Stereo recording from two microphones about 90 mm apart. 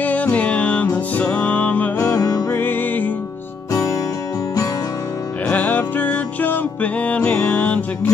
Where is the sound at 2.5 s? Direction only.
25° left (ahead or behind).